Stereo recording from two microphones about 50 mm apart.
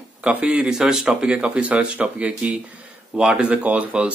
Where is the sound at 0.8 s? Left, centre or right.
Centre; by 2.5 s right.